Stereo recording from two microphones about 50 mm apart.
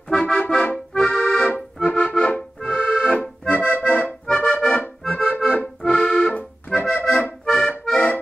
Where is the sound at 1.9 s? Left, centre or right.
Left.